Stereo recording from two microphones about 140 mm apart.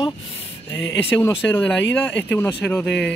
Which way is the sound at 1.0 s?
15° left (ahead or behind).